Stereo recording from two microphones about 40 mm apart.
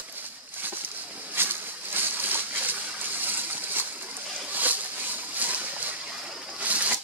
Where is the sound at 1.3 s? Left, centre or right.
Right.